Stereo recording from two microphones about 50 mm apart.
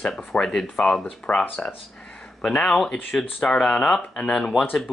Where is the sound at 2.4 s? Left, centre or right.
Centre.